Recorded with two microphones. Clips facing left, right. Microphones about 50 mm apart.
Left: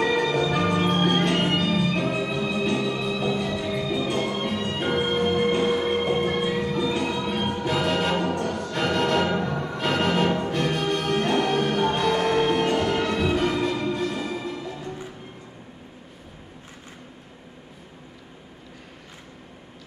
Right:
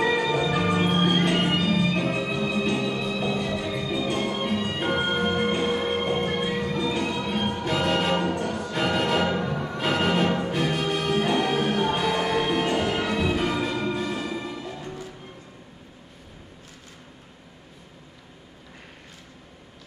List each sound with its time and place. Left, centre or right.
0.0 s music: centre